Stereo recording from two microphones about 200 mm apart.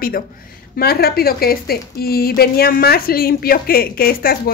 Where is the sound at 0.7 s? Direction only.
50° left (ahead or behind).